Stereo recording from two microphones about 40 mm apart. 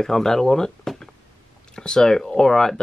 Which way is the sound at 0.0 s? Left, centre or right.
Centre.